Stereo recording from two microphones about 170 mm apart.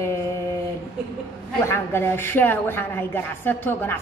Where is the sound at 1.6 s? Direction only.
15° left (ahead or behind).